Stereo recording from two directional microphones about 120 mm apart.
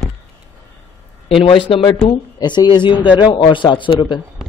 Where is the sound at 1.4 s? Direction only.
45° left (ahead or behind).